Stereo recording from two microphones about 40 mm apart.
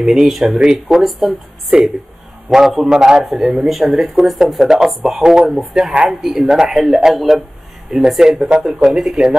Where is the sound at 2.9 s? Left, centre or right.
Centre.